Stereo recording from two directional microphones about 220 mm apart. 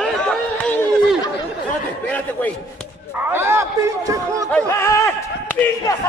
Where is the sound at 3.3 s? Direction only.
10° right (ahead or behind).